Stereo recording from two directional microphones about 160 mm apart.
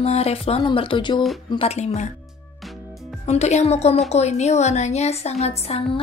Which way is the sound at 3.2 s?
45° left (ahead or behind).